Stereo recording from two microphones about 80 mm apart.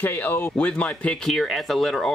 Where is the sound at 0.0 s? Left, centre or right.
Left.